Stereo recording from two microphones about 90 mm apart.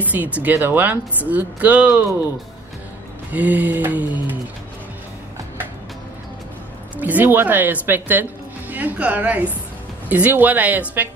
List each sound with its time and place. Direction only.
0.0 s speech: 20° right (ahead or behind)
3.3 s speech: 20° right (ahead or behind)
7.0 s speech: 20° right (ahead or behind)